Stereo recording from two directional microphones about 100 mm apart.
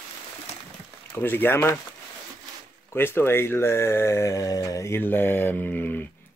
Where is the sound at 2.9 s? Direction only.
20° left (ahead or behind).